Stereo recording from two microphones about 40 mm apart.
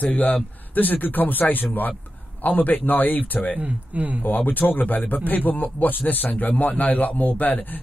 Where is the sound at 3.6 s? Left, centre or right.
Right.